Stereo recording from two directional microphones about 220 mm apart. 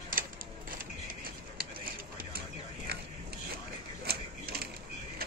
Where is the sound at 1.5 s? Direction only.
40° right (ahead or behind).